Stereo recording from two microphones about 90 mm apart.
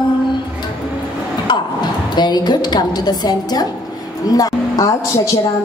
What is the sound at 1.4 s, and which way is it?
A woman's voice, 55° left (ahead or behind).